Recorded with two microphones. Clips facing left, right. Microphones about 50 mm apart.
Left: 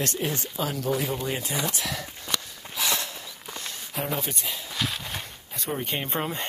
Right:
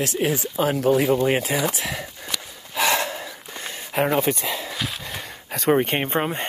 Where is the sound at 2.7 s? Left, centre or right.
Right.